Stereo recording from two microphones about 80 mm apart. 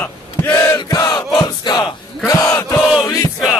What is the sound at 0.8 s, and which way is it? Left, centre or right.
Battle cry, left.